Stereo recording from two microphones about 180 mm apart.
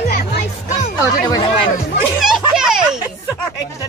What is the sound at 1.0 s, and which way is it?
Speech, 20° left (ahead or behind).